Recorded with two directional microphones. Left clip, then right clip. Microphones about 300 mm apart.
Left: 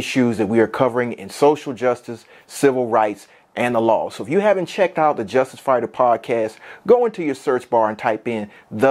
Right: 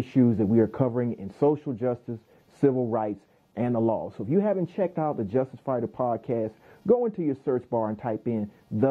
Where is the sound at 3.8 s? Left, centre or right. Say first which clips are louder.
Left 10 dB; left.